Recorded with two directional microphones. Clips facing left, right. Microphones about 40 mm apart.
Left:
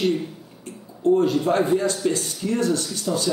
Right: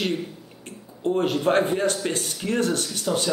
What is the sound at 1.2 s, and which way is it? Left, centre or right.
A man's voice, right.